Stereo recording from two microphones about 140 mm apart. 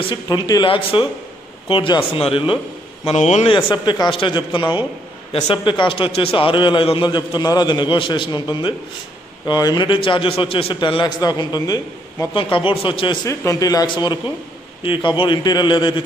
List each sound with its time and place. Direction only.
0.0 s a man's voice: 35° left (ahead or behind)
3.1 s a man's voice: 55° left (ahead or behind)
3.4 s a man's voice: 40° left (ahead or behind)
12.4 s a man's voice: 40° left (ahead or behind)
13.3 s a man's voice: 20° left (ahead or behind)